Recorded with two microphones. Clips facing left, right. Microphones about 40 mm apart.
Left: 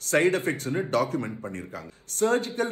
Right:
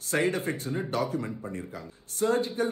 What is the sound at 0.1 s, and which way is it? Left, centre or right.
A man's voice, left.